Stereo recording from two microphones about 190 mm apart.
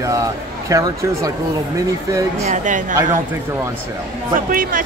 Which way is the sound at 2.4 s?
40° right (ahead or behind).